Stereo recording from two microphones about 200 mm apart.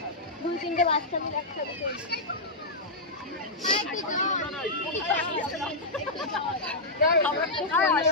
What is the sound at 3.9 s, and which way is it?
Speech, 40° left (ahead or behind).